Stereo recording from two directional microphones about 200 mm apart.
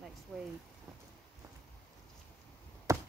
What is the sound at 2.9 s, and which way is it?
Chop, 15° right (ahead or behind).